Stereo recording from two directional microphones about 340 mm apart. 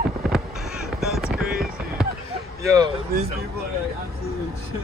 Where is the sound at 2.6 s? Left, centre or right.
Centre.